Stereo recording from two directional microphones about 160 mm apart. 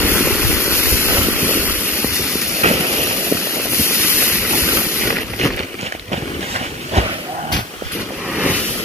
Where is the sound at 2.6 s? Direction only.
45° right (ahead or behind).